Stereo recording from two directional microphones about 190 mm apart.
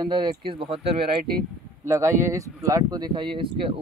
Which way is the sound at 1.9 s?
15° right (ahead or behind).